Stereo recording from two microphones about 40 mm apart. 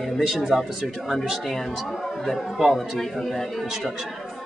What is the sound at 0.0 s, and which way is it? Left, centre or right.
A man's voice, centre.